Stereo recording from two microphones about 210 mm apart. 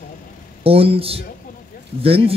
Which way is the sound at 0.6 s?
25° right (ahead or behind).